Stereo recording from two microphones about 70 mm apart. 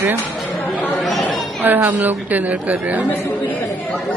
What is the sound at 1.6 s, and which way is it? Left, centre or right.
A woman's voice, right.